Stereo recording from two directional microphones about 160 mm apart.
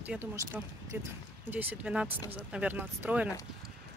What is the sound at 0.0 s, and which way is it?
Speech, 10° right (ahead or behind).